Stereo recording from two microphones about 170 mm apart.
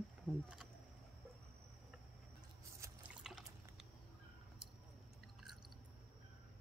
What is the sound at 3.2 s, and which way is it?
Liquid, centre (ahead or behind).